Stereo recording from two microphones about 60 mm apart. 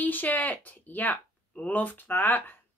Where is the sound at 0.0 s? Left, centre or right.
Left.